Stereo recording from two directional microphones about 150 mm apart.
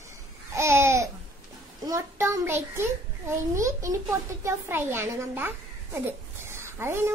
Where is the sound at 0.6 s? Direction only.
20° right (ahead or behind).